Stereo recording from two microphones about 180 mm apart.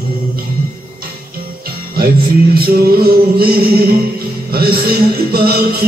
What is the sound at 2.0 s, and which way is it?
Music, 60° right (ahead or behind).